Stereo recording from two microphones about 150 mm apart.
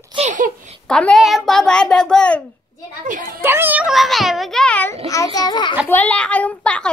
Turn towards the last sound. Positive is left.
turn(degrees=5)  # may be behind; listen again after turning